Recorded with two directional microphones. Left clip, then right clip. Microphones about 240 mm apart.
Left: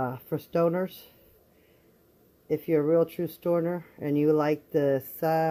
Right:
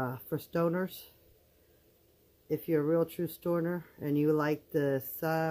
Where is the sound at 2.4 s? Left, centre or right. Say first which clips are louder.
Left 5 dB; centre.